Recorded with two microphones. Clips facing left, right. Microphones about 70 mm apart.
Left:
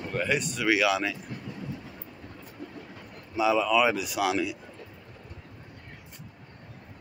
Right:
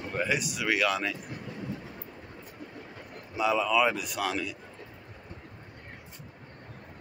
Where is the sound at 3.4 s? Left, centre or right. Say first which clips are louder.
Left 2 dB; centre.